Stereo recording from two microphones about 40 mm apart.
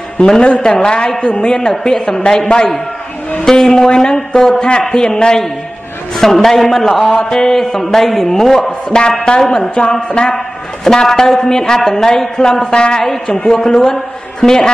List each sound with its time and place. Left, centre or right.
0.4 s a woman's voice: left
1.7 s a woman's voice: centre
6.1 s a woman's voice: centre
10.3 s a woman's voice: centre
13.0 s a woman's voice: centre